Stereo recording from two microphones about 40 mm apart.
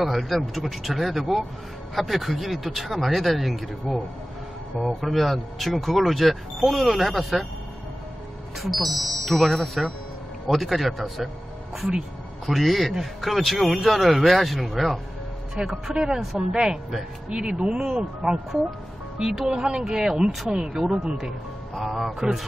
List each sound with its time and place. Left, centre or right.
0.0 s speech: centre
8.5 s speech: centre
12.4 s speech: centre
21.7 s speech: centre